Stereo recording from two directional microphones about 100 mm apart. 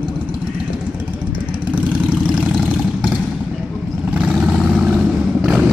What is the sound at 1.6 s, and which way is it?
Vehicle, 15° right (ahead or behind).